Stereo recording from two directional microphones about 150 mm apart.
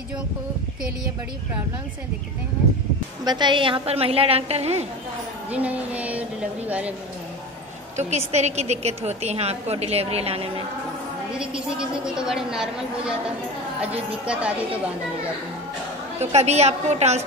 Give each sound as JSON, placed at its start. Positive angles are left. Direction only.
{"t": 3.3, "sound": "a woman's voice", "side_deg": -30}
{"t": 5.5, "sound": "speech", "side_deg": -10}
{"t": 8.0, "sound": "a woman's voice", "side_deg": -45}
{"t": 11.3, "sound": "a woman's voice", "side_deg": -5}
{"t": 16.2, "sound": "a woman's voice", "side_deg": -45}